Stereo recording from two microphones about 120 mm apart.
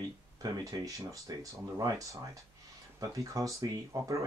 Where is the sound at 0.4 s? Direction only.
30° right (ahead or behind).